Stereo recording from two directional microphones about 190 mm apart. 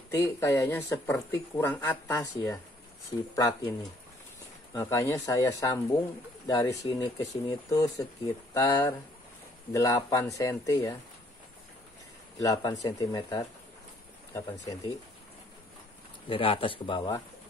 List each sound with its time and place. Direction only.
0.1 s speech: 15° left (ahead or behind)
4.7 s speech: 15° left (ahead or behind)
12.4 s speech: 20° left (ahead or behind)
16.3 s speech: 30° left (ahead or behind)